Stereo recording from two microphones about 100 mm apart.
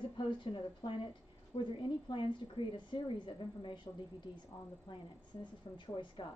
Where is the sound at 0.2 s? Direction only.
55° left (ahead or behind).